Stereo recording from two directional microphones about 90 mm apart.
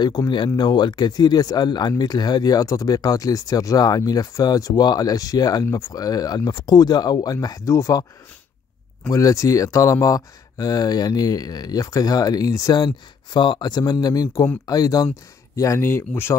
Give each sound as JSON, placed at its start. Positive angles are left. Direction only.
{"t": 0.6, "sound": "speech", "side_deg": 60}
{"t": 7.3, "sound": "speech", "side_deg": 35}
{"t": 9.1, "sound": "speech", "side_deg": 40}
{"t": 12.7, "sound": "speech", "side_deg": 55}